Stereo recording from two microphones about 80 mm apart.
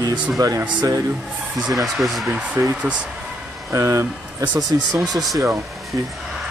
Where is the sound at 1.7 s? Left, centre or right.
Centre.